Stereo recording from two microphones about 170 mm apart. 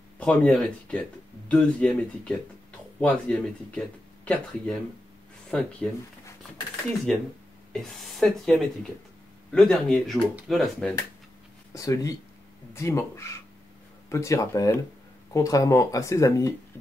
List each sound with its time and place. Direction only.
0.2 s speech: 10° left (ahead or behind)
7.7 s speech: centre (ahead or behind)
11.7 s speech: 20° left (ahead or behind)